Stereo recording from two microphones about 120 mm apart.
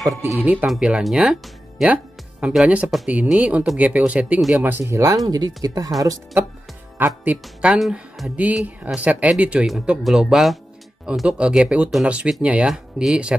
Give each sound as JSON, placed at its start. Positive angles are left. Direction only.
{"t": 0.4, "sound": "speech", "side_deg": -15}
{"t": 4.6, "sound": "speech", "side_deg": -20}
{"t": 7.1, "sound": "speech", "side_deg": -5}